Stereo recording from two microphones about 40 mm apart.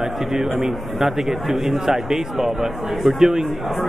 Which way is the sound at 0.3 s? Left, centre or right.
Centre.